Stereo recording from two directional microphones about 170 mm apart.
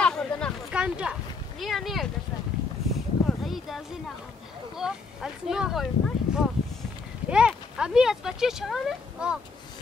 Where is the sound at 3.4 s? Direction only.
Centre (ahead or behind).